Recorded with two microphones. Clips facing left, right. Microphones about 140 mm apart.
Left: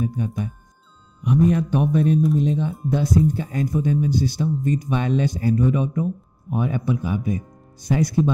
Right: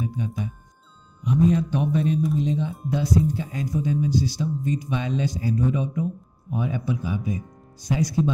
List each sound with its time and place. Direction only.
0.0 s speech: 50° left (ahead or behind)
0.3 s speech: centre (ahead or behind)
1.2 s speech: 60° left (ahead or behind)